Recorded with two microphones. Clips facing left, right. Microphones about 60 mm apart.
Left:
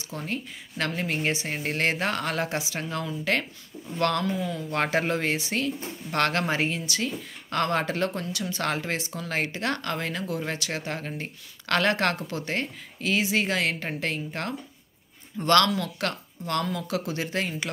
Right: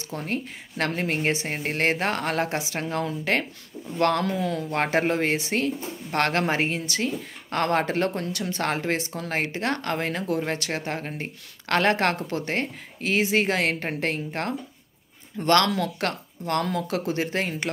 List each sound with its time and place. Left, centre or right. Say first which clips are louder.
0.1 s speech: right 3 dB; right
4.2 s speech: right 3 dB; right
4.9 s speech: right 5 dB; right